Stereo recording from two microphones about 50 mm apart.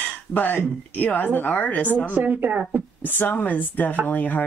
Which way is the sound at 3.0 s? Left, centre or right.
Left.